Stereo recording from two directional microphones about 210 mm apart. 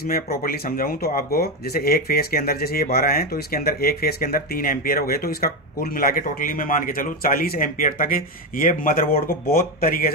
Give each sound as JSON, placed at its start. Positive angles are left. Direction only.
{"t": 0.0, "sound": "speech", "side_deg": 45}